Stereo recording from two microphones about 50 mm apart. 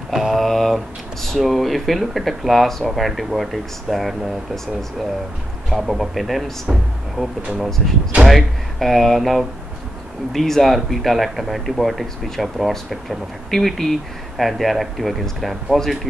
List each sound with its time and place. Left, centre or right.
0.1 s a sound: centre
0.4 s speech: centre
5.7 s speech: centre
7.2 s speech: centre